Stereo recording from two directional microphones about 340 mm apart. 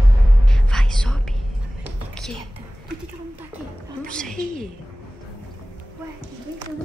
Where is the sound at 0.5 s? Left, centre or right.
Centre.